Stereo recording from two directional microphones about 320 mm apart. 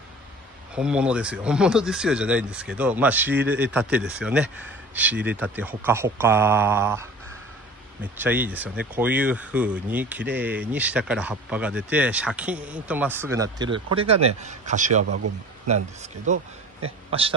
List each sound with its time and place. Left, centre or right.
0.7 s speech: centre; by 15.0 s right
15.0 s speech: right
15.7 s speech: right